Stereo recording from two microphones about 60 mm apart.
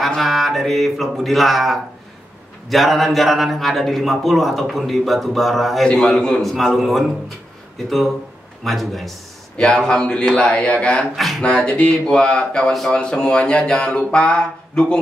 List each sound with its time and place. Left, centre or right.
0.0 s a man's voice: centre
5.9 s a man's voice: centre
8.6 s a man's voice: centre
9.6 s speech: centre
11.1 s a man's voice: centre
11.4 s speech: centre